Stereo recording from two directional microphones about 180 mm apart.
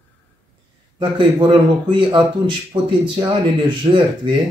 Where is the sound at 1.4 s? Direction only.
25° right (ahead or behind).